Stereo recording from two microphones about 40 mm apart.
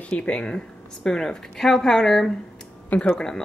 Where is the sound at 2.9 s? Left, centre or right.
Left.